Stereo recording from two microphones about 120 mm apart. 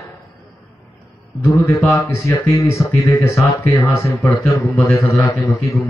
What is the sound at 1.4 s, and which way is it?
Speech, 25° left (ahead or behind).